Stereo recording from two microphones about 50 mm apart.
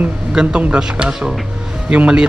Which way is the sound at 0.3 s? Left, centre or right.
Centre.